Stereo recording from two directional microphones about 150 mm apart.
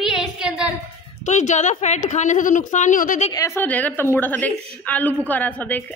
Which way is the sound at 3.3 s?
15° left (ahead or behind).